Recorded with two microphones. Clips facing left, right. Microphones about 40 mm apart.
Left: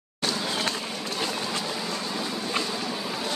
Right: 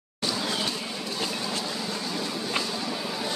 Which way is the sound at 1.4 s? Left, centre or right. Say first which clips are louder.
Left 1 dB; left.